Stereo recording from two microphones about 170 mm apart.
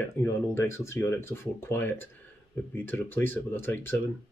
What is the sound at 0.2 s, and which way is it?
Speech, 15° left (ahead or behind).